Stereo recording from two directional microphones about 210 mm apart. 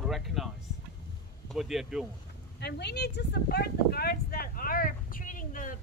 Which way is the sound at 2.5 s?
55° left (ahead or behind).